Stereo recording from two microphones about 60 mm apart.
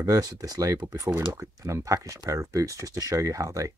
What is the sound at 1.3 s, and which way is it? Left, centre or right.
Speech, right.